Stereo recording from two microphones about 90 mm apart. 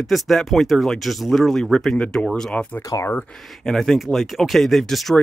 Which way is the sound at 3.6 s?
Centre (ahead or behind).